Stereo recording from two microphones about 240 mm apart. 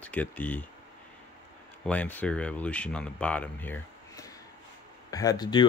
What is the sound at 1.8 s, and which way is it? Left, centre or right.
Speech, centre.